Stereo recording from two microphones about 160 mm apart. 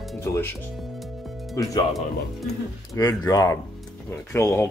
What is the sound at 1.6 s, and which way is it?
Speech, 20° left (ahead or behind).